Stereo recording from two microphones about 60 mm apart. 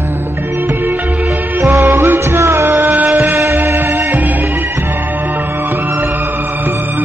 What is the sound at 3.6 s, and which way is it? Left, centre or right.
Music, right.